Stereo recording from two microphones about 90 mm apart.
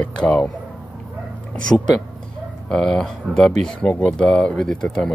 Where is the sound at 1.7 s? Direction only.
30° left (ahead or behind).